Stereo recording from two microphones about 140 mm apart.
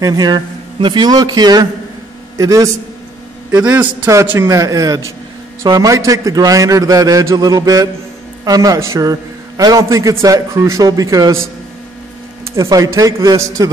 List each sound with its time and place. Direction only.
0.0 s a man's voice: 30° right (ahead or behind)
3.5 s a man's voice: 10° right (ahead or behind); by 11.3 s 25° right (ahead or behind)
12.5 s a man's voice: 25° right (ahead or behind)